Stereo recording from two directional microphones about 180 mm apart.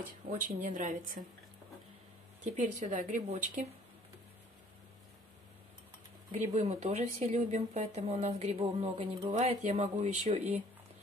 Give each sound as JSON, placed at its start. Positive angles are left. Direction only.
{"t": 0.5, "sound": "speech", "side_deg": -50}
{"t": 2.4, "sound": "speech", "side_deg": -40}
{"t": 6.4, "sound": "a woman's voice", "side_deg": -40}